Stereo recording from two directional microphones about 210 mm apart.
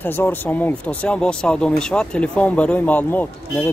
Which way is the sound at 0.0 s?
10° left (ahead or behind).